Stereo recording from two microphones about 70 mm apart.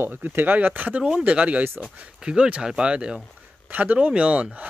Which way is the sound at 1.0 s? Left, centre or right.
Centre.